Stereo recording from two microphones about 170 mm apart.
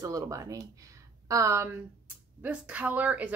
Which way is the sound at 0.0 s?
20° right (ahead or behind).